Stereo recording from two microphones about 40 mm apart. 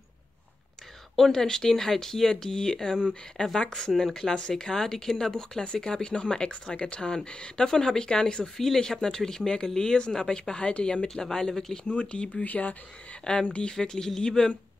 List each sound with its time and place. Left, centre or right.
1.1 s speech: centre
4.0 s speech: centre
8.5 s speech: centre
11.9 s speech: left
13.2 s speech: centre